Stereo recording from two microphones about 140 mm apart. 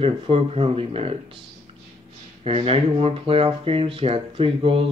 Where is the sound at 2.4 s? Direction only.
45° right (ahead or behind).